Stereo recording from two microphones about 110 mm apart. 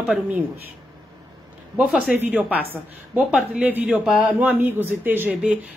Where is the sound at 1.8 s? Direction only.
10° right (ahead or behind).